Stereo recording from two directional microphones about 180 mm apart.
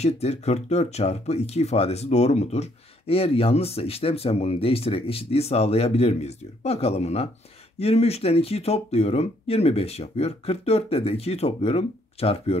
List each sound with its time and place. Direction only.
0.0 s speech: 35° left (ahead or behind)